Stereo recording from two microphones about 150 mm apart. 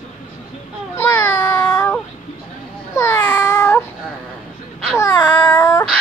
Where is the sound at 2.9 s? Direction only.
15° left (ahead or behind).